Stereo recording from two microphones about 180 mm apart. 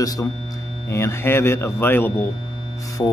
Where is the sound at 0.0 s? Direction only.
20° left (ahead or behind).